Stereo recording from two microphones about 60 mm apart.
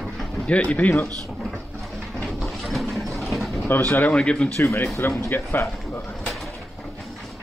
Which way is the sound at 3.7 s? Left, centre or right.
Left.